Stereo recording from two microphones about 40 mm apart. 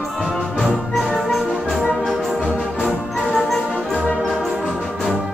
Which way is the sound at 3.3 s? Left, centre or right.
Centre.